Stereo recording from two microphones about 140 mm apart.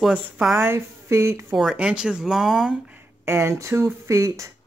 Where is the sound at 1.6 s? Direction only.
5° right (ahead or behind).